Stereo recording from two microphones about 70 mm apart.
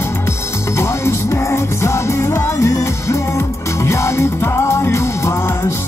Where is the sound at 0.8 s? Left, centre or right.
Left.